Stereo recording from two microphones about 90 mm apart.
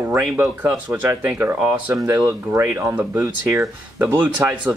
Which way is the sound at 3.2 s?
35° right (ahead or behind).